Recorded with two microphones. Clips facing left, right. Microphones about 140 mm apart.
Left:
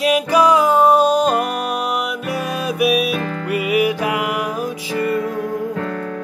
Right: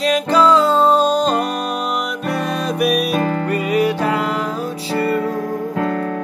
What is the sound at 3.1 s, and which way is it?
Music, 40° right (ahead or behind).